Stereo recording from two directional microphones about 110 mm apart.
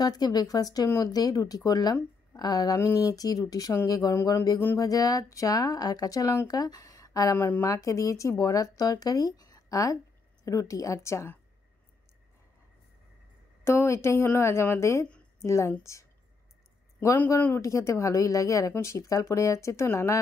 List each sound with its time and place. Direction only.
0.0 s speech: 35° left (ahead or behind)
7.3 s speech: 20° left (ahead or behind)
7.6 s speech: 30° left (ahead or behind)
13.7 s a woman's voice: 25° left (ahead or behind)